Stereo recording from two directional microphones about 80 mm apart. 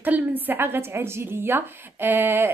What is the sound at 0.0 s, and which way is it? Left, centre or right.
A woman's voice, right.